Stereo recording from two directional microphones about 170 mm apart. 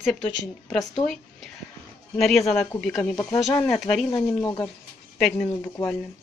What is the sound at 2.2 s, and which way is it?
Speech, centre (ahead or behind).